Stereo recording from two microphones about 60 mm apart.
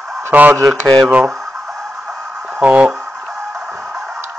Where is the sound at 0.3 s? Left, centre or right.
Right.